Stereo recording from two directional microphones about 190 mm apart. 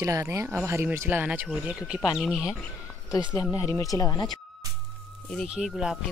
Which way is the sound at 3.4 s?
15° left (ahead or behind).